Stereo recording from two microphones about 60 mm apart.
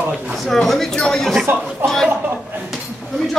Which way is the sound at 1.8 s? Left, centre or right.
Right.